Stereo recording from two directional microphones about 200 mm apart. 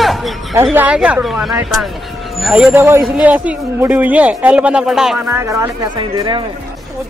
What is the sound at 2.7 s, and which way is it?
Speech, 15° right (ahead or behind).